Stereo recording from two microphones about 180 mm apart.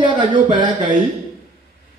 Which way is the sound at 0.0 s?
25° right (ahead or behind).